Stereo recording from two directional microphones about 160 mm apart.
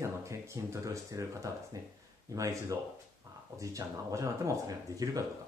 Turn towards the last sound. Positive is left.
turn(degrees=-20)  # may be behind; listen again after turning